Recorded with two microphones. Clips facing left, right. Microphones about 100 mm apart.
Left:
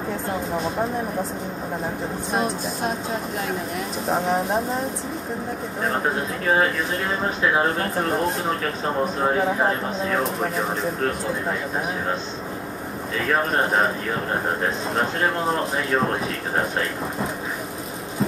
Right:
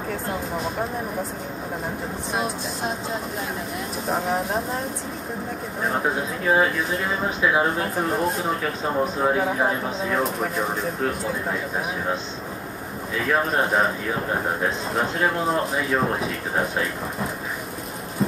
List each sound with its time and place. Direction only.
2.3 s speech: centre (ahead or behind)
4.1 s speech: centre (ahead or behind)
5.9 s speech: centre (ahead or behind)
13.3 s speech: centre (ahead or behind)
16.0 s speech: 5° right (ahead or behind)